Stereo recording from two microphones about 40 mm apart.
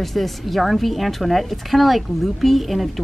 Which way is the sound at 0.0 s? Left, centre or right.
Centre.